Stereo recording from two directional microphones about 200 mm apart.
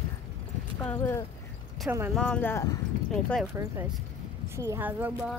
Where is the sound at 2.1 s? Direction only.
5° left (ahead or behind).